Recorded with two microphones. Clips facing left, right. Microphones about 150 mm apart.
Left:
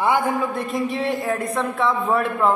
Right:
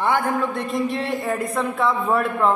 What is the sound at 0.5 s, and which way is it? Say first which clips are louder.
A man's voice: even; centre (ahead or behind).